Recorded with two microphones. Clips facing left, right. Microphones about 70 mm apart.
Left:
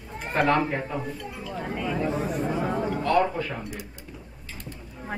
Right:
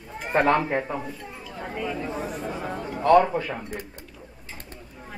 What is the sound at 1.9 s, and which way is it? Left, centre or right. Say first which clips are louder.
Speech: left 4 dB; centre.